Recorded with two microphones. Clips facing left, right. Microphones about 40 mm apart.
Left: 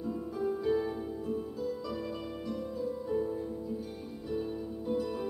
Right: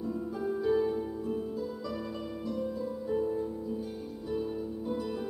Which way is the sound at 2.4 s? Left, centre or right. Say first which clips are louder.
Right 2 dB; centre.